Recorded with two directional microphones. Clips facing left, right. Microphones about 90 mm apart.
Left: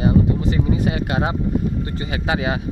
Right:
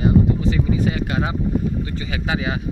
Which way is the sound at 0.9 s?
45° left (ahead or behind).